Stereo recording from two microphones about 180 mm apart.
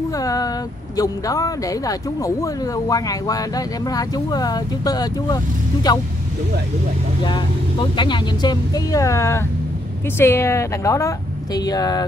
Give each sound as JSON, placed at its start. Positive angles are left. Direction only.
{"t": 0.2, "sound": "speech", "side_deg": 20}
{"t": 7.9, "sound": "a woman's voice", "side_deg": 25}